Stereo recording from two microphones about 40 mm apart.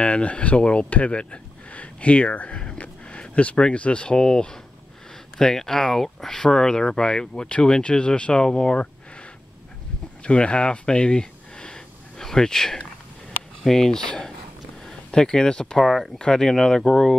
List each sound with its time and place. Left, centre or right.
0.0 s speech: left
10.2 s a sound: left
13.6 s speech: centre
15.6 s speech: centre